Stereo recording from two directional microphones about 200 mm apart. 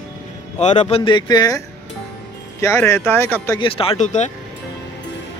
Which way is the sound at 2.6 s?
15° left (ahead or behind).